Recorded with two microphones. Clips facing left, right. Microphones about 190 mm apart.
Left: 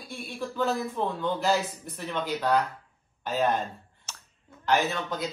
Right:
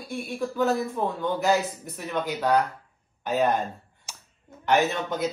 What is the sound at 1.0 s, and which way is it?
Speech, 10° right (ahead or behind).